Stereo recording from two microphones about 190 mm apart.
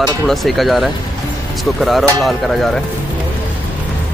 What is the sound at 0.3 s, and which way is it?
Speech, centre (ahead or behind).